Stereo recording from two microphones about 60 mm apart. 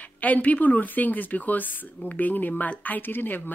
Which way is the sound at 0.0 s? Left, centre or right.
Left.